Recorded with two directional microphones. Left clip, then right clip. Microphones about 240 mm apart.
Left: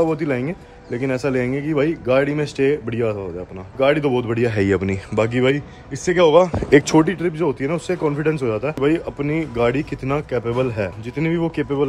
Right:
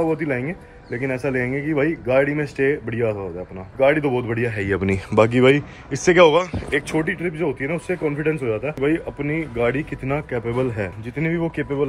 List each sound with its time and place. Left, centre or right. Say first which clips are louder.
0.0 s speech: left 2 dB; centre
6.9 s speech: left 6 dB; left
7.2 s speech: left 3 dB; centre